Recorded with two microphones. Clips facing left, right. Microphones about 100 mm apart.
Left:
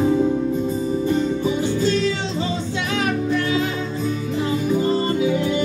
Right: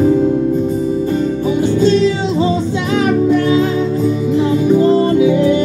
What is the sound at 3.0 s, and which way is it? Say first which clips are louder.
Music: right 9 dB; 35° right (ahead or behind).